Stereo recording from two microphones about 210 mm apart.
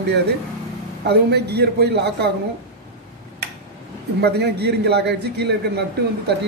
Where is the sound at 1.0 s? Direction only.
50° right (ahead or behind).